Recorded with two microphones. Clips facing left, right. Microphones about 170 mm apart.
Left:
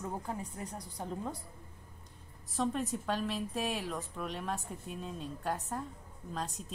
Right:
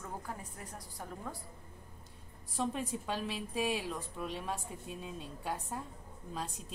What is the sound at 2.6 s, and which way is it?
Speech, 10° right (ahead or behind).